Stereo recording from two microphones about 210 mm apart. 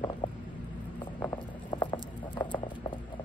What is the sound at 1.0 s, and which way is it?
Patter, 20° left (ahead or behind).